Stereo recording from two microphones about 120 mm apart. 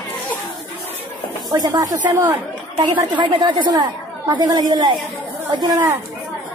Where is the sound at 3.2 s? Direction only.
40° right (ahead or behind).